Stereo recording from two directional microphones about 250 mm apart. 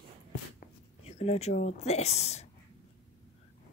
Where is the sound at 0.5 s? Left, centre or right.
Left.